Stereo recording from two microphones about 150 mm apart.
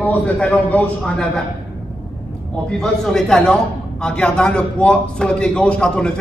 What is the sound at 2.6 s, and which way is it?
A man's voice, 5° left (ahead or behind).